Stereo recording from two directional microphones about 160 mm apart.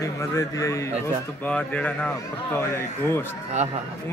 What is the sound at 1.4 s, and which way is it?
A man's voice, 10° left (ahead or behind).